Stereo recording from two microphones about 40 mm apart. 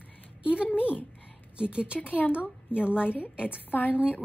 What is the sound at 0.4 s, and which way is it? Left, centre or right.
Speech, right.